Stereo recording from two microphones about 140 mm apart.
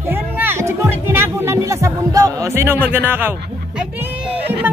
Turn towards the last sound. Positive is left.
turn(degrees=-15)  # may be behind; listen again after turning